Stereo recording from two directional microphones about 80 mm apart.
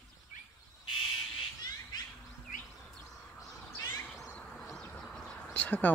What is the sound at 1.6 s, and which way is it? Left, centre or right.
Bird, left.